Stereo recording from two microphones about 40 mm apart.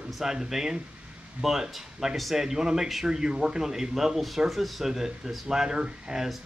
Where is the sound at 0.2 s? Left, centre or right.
Centre.